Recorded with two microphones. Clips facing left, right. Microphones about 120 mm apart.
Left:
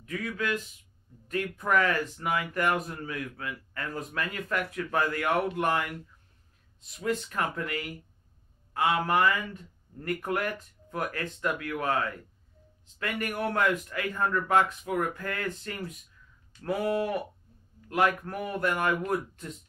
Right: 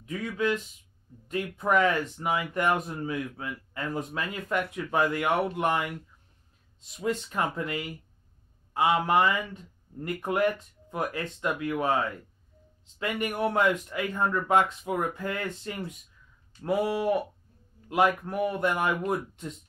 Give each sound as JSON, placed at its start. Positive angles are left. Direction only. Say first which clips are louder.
{"t": 0.0, "sound": "a man's voice", "louder": "right 4 dB", "side_deg": -20}
{"t": 7.0, "sound": "a man's voice", "louder": "right 1 dB", "side_deg": -20}